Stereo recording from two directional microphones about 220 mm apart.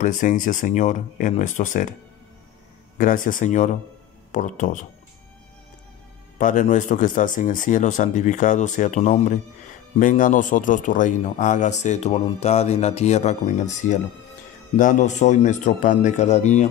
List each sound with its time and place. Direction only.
0.0 s a man's voice: 35° left (ahead or behind)
3.0 s a man's voice: 40° left (ahead or behind)
6.3 s a man's voice: 35° left (ahead or behind)